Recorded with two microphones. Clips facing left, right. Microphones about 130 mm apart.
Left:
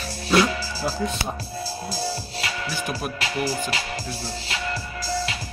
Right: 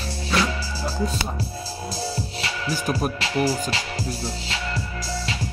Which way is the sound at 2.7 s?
40° right (ahead or behind).